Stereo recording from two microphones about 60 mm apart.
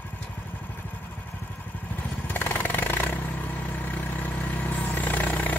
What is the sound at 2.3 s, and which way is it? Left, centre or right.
Chainsaw, left.